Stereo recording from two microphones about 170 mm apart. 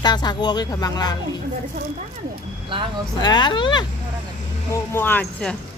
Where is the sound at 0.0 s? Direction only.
25° left (ahead or behind).